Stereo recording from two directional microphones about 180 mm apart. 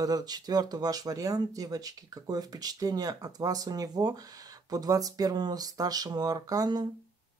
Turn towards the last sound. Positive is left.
turn(degrees=-20)  # may be behind; listen again after turning